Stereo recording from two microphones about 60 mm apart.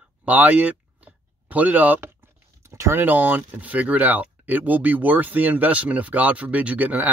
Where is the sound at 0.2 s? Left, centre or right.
Right.